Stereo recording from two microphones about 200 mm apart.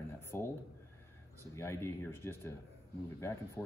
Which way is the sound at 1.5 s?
15° left (ahead or behind).